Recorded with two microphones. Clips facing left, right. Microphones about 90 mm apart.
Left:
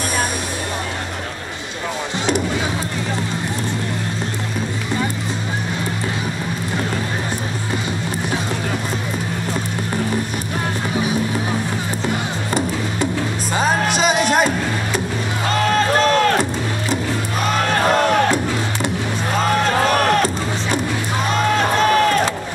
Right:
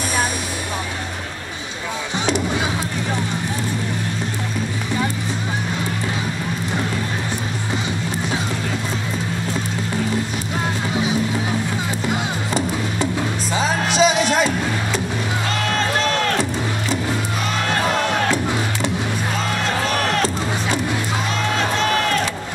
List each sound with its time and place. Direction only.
13.6 s music: 50° left (ahead or behind)
15.5 s music: 40° left (ahead or behind)
19.3 s music: 50° left (ahead or behind)
21.7 s a sound: 40° left (ahead or behind)